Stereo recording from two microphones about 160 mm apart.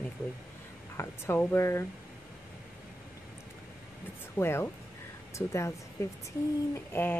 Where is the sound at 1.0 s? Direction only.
10° left (ahead or behind).